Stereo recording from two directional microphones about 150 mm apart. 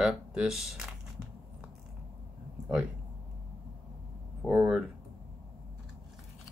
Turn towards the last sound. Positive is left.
turn(degrees=-5)  # may be behind; listen again after turning